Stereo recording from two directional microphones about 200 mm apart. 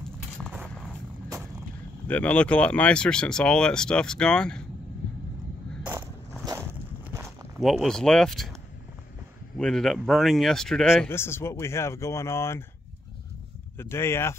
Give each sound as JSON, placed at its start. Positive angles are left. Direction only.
{"t": 0.4, "sound": "a sound", "side_deg": 0}
{"t": 2.0, "sound": "speech", "side_deg": 5}
{"t": 6.4, "sound": "a sound", "side_deg": -15}
{"t": 7.6, "sound": "speech", "side_deg": 0}
{"t": 9.6, "sound": "speech", "side_deg": 0}
{"t": 13.7, "sound": "speech", "side_deg": 10}